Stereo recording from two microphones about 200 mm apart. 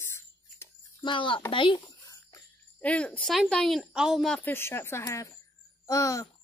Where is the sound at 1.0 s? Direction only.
25° left (ahead or behind).